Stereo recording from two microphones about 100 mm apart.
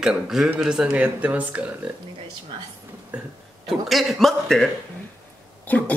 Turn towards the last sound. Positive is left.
turn(degrees=15)  # may be behind; listen again after turning